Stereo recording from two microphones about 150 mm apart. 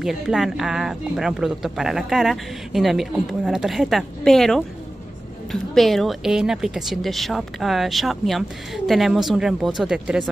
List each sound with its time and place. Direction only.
0.0 s speech: 5° right (ahead or behind)